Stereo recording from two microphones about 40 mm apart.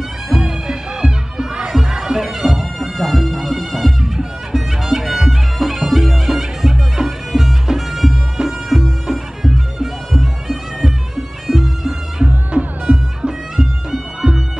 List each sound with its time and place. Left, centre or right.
0.3 s music: centre
1.7 s bagpipes: centre
2.5 s music: centre
4.6 s bagpipes: centre
6.3 s music: centre
8.7 s bagpipes: centre
12.6 s music: right
13.2 s music: centre